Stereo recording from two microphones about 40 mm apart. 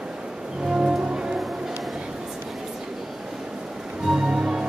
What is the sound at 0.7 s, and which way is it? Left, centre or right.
Music, centre.